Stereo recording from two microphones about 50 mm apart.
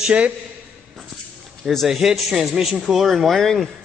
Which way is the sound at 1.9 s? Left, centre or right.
Centre.